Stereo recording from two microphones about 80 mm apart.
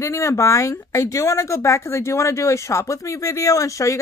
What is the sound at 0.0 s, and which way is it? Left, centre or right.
Speech, left.